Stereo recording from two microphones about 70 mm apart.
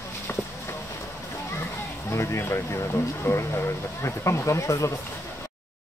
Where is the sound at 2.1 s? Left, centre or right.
Left.